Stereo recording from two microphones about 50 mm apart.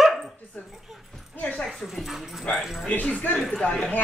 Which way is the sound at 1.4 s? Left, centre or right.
Left.